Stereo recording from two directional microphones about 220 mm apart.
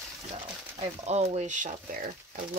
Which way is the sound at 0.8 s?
30° right (ahead or behind).